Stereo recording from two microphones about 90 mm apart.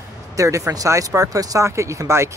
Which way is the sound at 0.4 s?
35° right (ahead or behind).